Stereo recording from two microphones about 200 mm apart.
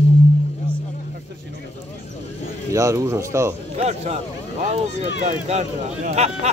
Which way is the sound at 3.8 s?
30° right (ahead or behind).